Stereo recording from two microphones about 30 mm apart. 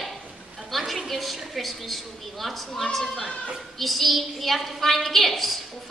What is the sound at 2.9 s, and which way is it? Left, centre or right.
Speech, centre.